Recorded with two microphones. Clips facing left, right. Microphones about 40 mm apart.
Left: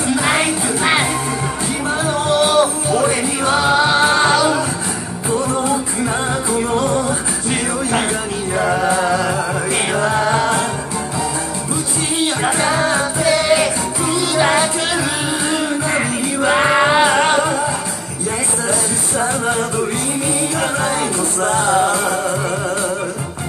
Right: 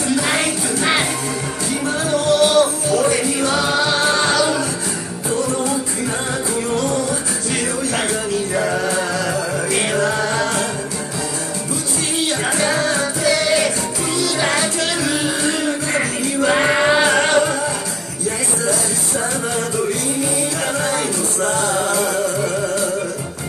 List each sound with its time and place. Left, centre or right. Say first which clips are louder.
0.1 s music: left 3 dB; left
2.1 s music: right 1 dB; left
12.4 s music: left 2 dB; left
19.1 s music: left 4 dB; left
20.6 s music: left 2 dB; left